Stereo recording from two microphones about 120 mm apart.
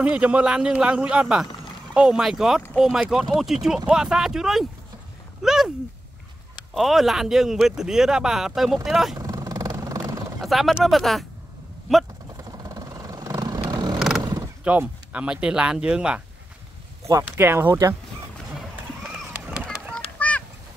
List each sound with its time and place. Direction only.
0.0 s speech: 10° right (ahead or behind)
6.7 s speech: centre (ahead or behind)
9.1 s vehicle: 30° right (ahead or behind)
10.4 s speech: centre (ahead or behind)
12.4 s vehicle: 30° right (ahead or behind)
13.9 s horse: 5° right (ahead or behind)
14.2 s a sound: 35° right (ahead or behind)
14.6 s speech: 10° right (ahead or behind)
17.1 s speech: 20° right (ahead or behind)
20.2 s a sound: 10° left (ahead or behind)